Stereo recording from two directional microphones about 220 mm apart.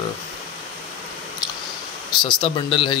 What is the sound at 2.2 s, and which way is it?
Speech, 25° left (ahead or behind).